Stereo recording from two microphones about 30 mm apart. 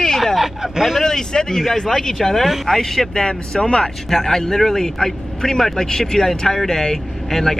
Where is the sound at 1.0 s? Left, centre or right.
Centre.